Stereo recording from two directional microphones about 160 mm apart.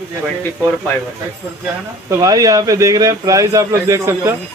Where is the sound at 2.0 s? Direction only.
20° right (ahead or behind).